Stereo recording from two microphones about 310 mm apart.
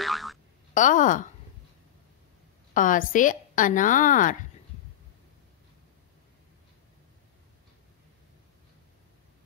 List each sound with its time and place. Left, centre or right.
0.0 s boing: centre
0.7 s a woman's voice: left
2.7 s a woman's voice: left